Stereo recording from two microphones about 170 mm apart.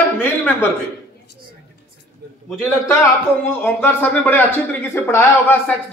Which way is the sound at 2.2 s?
70° right (ahead or behind).